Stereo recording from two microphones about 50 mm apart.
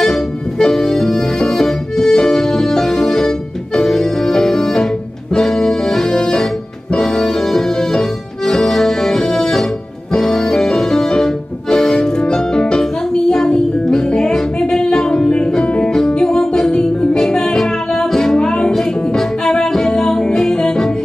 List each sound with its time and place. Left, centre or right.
0.0 s music: centre